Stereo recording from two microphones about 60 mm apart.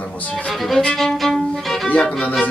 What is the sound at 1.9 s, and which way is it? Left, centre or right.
Music, left.